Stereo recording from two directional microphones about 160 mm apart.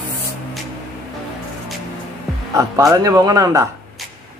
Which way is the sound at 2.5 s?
20° right (ahead or behind).